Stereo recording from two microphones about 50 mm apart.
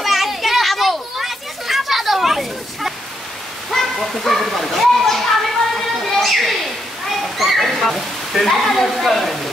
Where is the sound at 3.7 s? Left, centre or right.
Centre.